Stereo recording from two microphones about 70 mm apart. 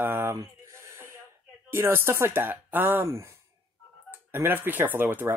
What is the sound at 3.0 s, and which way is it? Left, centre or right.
Speech, right.